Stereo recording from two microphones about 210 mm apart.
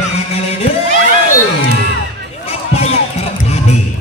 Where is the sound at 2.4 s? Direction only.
30° left (ahead or behind).